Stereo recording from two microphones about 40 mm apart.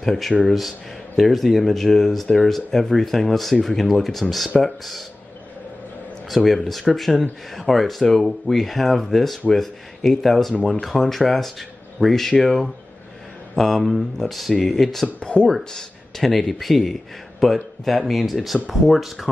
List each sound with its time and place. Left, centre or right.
0.0 s speech: centre
6.3 s speech: centre
15.1 s speech: left
15.5 s speech: centre